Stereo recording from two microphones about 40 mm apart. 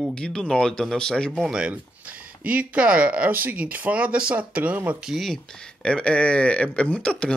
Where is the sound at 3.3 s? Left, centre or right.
Right.